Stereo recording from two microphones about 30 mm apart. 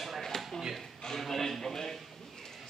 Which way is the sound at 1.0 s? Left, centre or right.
Centre.